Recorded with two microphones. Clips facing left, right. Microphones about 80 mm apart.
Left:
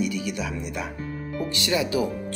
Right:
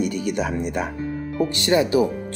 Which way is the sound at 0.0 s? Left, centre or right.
Right.